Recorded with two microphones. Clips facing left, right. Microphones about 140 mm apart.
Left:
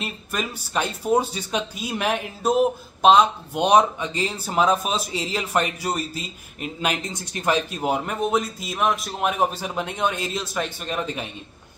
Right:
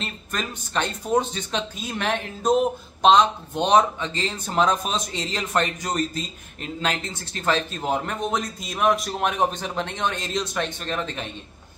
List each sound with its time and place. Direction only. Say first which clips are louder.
0.0 s speech: left 2 dB; 10° left (ahead or behind)